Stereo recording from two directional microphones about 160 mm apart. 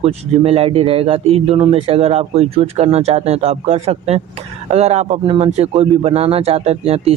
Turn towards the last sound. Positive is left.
turn(degrees=-40)  # may be behind; listen again after turning